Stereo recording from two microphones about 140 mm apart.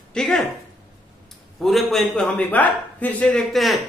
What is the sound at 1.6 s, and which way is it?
A man's voice, centre (ahead or behind).